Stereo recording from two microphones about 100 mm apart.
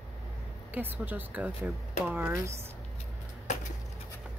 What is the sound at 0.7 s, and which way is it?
Speech, 20° right (ahead or behind).